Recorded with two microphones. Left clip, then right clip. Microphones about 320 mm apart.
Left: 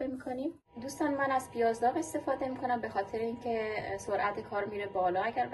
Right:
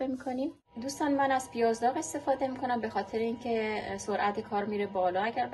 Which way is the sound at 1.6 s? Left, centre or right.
Right.